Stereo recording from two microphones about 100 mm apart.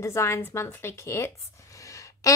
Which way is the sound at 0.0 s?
30° left (ahead or behind).